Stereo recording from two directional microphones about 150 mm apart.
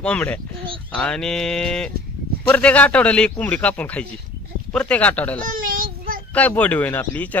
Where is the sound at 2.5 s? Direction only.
10° left (ahead or behind).